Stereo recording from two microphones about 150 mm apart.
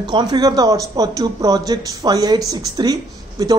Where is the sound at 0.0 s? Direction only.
30° right (ahead or behind).